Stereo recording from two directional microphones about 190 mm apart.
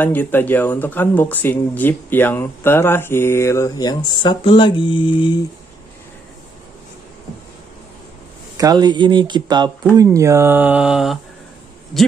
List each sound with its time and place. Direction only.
0.0 s speech: 10° left (ahead or behind); by 5.4 s 25° left (ahead or behind)
8.5 s speech: 20° right (ahead or behind); by 12.1 s centre (ahead or behind)